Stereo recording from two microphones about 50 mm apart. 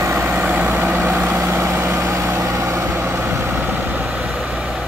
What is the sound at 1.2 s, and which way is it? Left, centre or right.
Vehicle, right.